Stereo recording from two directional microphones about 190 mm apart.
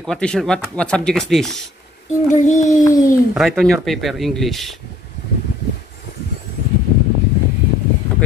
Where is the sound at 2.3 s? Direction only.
40° left (ahead or behind).